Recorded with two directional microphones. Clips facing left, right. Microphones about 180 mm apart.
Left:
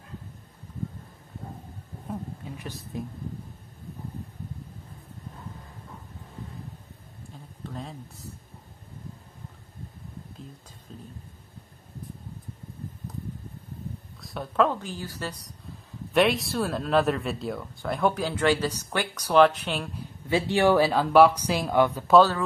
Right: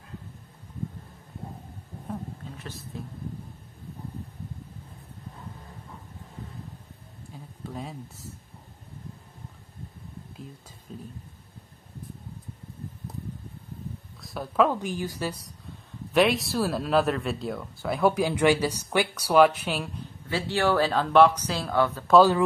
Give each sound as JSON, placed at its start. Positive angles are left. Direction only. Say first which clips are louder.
{"t": 2.6, "sound": "speech", "louder": "left 2 dB", "side_deg": 15}
{"t": 7.6, "sound": "a sound", "louder": "right 1 dB", "side_deg": -10}
{"t": 10.9, "sound": "speech", "louder": "right 3 dB", "side_deg": -5}
{"t": 14.2, "sound": "speech", "louder": "right 1 dB", "side_deg": 0}
{"t": 14.8, "sound": "a woman's voice", "louder": "right 4 dB", "side_deg": -15}
{"t": 16.1, "sound": "speech", "louder": "even", "side_deg": 0}
{"t": 20.2, "sound": "speech", "louder": "left 4 dB", "side_deg": 20}